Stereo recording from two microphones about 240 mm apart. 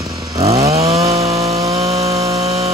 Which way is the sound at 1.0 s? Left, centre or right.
Centre.